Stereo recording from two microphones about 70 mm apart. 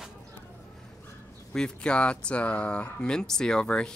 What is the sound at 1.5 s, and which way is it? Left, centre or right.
Speech, centre.